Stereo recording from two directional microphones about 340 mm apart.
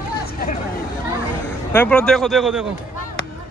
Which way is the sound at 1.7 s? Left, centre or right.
Centre.